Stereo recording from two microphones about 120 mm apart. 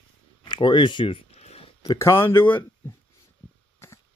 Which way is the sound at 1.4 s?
60° left (ahead or behind).